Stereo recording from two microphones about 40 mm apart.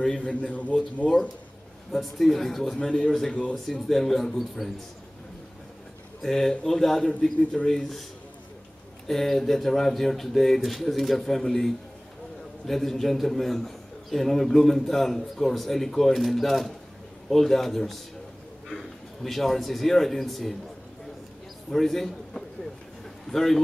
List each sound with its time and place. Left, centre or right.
0.0 s a man's voice: left
1.9 s a man's voice: centre
2.7 s a man's voice: centre
3.6 s speech: centre
6.2 s speech: centre
9.0 s a man's voice: centre
19.2 s a man's voice: centre
21.6 s a man's voice: centre